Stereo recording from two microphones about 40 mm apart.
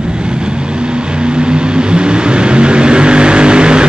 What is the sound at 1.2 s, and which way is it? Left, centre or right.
Vehicle, right.